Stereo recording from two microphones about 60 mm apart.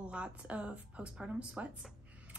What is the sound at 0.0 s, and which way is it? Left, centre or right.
Speech, centre.